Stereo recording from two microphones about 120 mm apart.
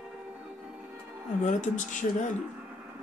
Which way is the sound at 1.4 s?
90° left.